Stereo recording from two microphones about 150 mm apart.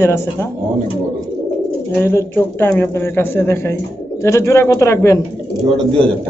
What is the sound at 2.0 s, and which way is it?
A man's voice, 15° left (ahead or behind).